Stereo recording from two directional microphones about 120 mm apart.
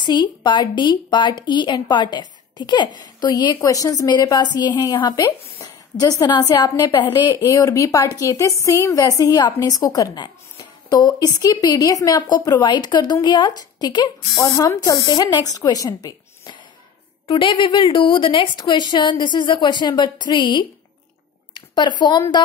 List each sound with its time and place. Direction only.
0.0 s a woman's voice: 35° left (ahead or behind)
17.3 s a woman's voice: 45° left (ahead or behind)